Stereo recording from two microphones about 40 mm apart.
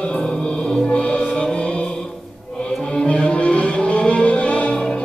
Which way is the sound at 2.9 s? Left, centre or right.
Left.